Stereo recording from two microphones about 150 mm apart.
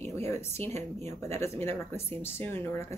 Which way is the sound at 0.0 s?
15° left (ahead or behind).